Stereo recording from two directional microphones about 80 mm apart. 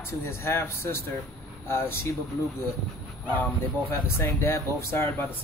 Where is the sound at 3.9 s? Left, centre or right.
Left.